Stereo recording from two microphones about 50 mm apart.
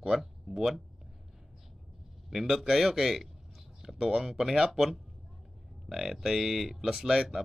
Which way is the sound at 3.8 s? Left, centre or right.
Centre.